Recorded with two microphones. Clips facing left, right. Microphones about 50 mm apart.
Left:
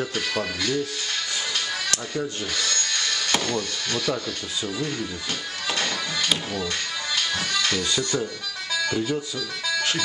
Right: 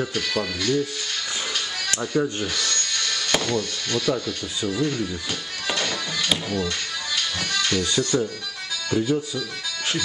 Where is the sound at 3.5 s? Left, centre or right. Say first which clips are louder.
Right 2 dB; centre.